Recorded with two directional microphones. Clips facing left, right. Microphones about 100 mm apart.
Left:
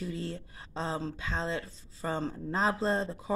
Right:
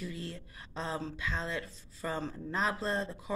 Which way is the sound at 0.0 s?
30° left (ahead or behind).